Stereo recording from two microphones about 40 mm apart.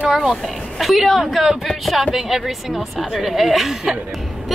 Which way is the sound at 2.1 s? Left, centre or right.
Centre.